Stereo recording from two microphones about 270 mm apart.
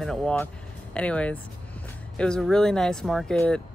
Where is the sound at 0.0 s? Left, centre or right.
Centre.